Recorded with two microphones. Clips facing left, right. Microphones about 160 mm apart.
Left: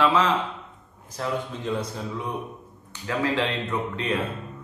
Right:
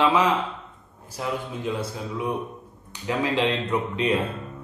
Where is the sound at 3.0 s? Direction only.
15° right (ahead or behind).